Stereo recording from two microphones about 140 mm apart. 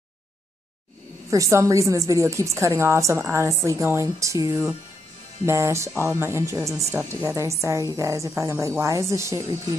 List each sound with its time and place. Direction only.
1.3 s a woman's voice: 20° right (ahead or behind)